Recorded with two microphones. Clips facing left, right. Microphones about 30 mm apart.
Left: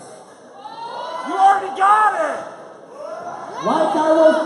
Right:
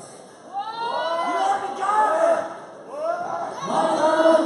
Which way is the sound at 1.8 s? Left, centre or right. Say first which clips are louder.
Left 11 dB; left.